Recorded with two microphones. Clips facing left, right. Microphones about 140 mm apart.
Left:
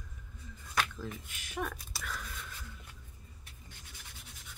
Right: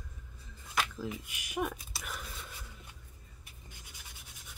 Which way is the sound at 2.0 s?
20° right (ahead or behind).